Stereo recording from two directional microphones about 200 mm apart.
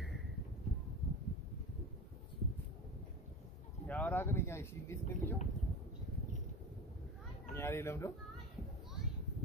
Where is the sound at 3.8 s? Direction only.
5° left (ahead or behind).